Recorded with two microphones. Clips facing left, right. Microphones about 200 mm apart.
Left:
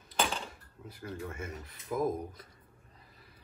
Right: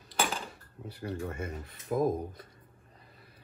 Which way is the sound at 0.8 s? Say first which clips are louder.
Right 5 dB; 65° right (ahead or behind).